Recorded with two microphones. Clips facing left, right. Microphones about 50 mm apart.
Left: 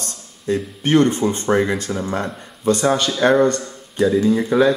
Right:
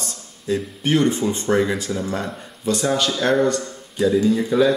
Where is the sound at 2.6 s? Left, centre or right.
Left.